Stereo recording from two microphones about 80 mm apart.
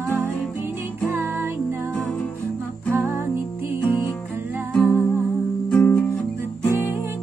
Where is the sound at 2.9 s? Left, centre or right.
Right.